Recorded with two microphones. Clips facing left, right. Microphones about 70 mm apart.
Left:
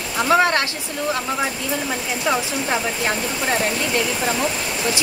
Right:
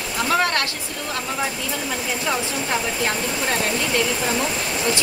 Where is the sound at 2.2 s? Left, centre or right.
Centre.